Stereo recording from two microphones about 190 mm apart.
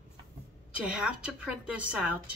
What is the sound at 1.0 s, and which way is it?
A woman's voice, 5° right (ahead or behind).